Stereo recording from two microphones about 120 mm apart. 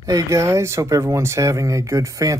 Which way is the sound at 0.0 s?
25° right (ahead or behind).